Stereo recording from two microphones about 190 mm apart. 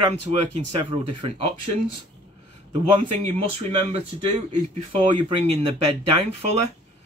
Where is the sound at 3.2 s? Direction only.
35° right (ahead or behind).